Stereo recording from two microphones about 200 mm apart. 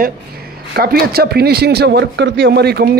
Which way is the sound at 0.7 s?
50° right (ahead or behind).